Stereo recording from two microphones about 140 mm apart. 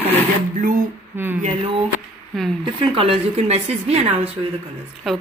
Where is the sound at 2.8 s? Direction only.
40° right (ahead or behind).